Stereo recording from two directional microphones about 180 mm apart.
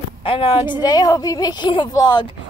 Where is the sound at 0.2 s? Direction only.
30° left (ahead or behind).